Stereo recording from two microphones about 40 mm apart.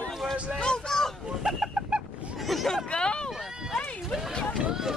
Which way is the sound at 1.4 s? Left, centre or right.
Centre.